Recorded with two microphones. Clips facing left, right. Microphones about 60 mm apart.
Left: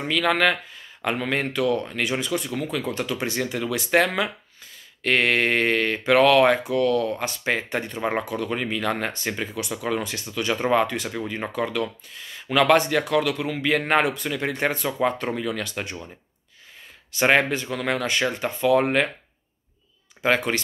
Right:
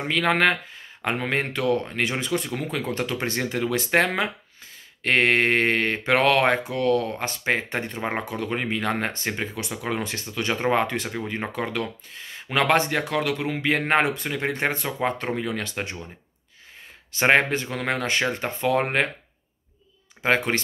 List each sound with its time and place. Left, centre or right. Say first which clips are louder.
0.0 s speech: even; right
17.1 s speech: even; right
20.2 s speech: even; right